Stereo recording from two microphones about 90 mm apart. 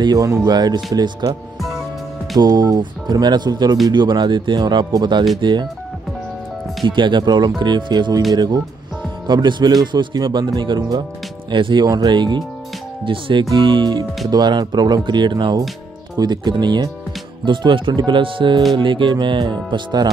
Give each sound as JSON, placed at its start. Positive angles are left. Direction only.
{"t": 0.0, "sound": "speech", "side_deg": -45}
{"t": 2.3, "sound": "speech", "side_deg": -50}
{"t": 6.9, "sound": "speech", "side_deg": -60}
{"t": 9.3, "sound": "speech", "side_deg": -55}
{"t": 17.5, "sound": "speech", "side_deg": -65}